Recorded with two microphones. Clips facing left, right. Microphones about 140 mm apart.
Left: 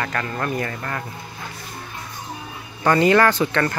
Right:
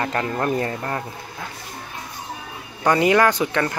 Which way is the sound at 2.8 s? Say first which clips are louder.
Left 1 dB; 15° right (ahead or behind).